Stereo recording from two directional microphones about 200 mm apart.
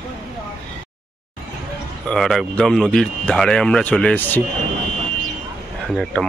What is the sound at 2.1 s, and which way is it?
Speech, centre (ahead or behind).